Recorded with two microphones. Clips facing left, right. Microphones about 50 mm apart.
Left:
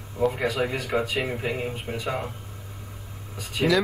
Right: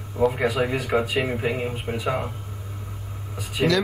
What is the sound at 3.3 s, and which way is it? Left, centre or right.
Speech, centre.